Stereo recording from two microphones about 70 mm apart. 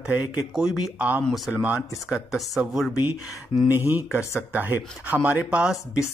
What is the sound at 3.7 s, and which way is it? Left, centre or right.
Speech, right.